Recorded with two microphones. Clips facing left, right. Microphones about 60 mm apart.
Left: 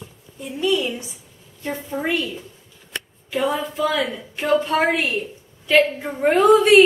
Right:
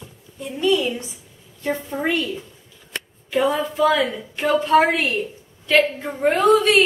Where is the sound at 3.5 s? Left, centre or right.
Centre.